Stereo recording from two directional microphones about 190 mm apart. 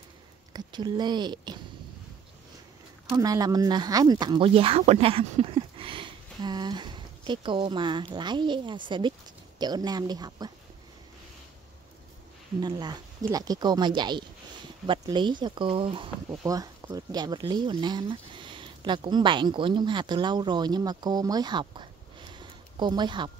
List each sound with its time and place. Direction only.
0.5 s speech: 20° right (ahead or behind)
3.1 s speech: 20° right (ahead or behind)
12.5 s speech: 20° right (ahead or behind)